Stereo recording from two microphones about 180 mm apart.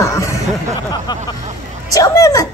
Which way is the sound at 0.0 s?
15° left (ahead or behind).